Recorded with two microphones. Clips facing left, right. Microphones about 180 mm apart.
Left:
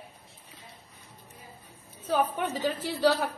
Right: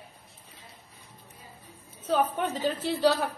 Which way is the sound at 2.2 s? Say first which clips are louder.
Even; 10° left (ahead or behind).